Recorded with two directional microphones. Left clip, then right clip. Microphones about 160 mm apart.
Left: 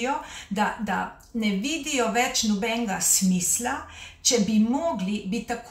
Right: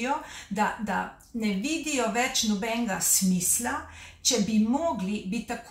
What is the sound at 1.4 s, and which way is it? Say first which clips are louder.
Speech: left 2 dB; 15° left (ahead or behind).